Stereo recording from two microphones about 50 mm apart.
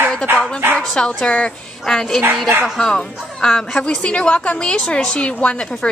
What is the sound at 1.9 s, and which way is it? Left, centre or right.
Speech, centre.